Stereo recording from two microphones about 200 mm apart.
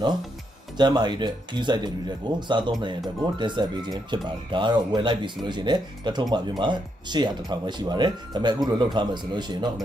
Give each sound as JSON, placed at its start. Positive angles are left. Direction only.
{"t": 0.7, "sound": "speech", "side_deg": -20}